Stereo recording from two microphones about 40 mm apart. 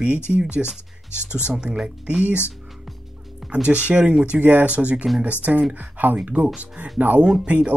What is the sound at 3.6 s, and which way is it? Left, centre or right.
Speech, right.